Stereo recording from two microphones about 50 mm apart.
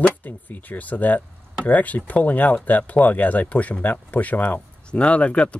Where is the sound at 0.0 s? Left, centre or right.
Left.